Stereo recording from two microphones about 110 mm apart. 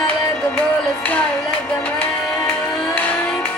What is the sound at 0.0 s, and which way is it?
Music, 15° left (ahead or behind).